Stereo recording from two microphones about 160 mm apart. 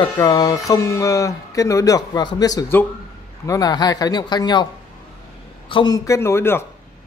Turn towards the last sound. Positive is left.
turn(degrees=15)  # may be behind; listen again after turning